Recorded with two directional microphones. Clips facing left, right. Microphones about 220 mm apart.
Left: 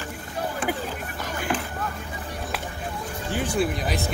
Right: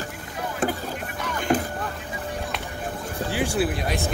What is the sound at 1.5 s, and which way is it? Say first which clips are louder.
Vehicle: right 6 dB; 40° right (ahead or behind).